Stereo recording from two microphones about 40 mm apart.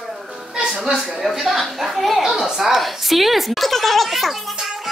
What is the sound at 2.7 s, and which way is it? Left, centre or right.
Speech, centre.